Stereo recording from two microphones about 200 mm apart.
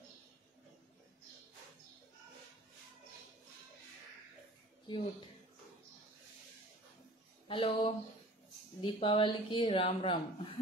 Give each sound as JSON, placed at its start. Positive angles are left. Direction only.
{"t": 7.4, "sound": "speech", "side_deg": 25}